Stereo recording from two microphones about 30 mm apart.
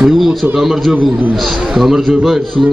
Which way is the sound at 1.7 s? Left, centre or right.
Centre.